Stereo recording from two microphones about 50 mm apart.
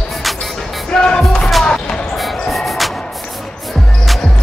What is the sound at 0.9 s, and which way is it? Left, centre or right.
Music, centre.